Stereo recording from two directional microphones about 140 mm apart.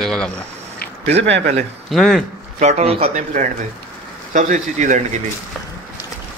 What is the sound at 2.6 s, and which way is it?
Speech, 50° right (ahead or behind).